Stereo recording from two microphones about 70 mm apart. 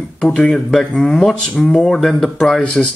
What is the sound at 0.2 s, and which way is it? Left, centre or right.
A man's voice, centre.